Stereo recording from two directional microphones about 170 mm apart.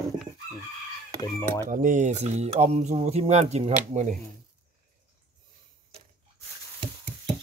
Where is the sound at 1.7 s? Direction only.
50° right (ahead or behind).